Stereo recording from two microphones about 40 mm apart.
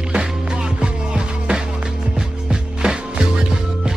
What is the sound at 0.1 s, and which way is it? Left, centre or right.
Music, right.